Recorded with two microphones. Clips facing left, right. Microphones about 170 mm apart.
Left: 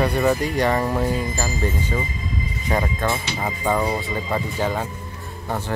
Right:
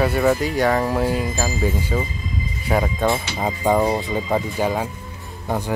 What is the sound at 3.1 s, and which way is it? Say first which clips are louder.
Speech: right 3 dB; 15° right (ahead or behind).